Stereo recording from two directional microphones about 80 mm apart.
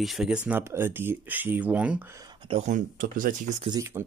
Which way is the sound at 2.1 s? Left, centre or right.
Right.